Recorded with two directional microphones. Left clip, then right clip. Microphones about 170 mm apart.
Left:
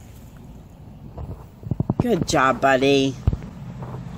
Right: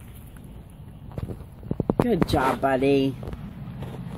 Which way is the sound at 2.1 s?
10° left (ahead or behind).